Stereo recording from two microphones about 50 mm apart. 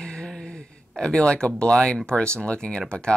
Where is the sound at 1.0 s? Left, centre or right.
Centre.